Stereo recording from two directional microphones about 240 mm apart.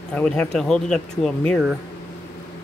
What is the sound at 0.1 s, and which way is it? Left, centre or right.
Speech, centre.